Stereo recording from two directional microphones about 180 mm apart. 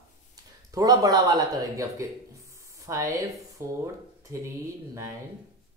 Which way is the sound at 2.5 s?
15° right (ahead or behind).